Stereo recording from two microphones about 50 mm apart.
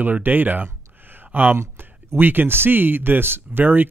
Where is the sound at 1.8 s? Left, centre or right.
Right.